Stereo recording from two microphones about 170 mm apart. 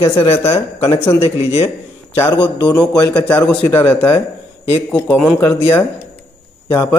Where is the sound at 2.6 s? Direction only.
25° left (ahead or behind).